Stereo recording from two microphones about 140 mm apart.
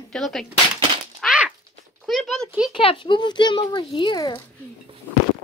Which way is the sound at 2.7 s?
40° left (ahead or behind).